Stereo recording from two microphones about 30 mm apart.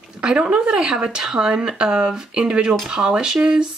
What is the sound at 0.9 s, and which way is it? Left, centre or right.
Speech, right.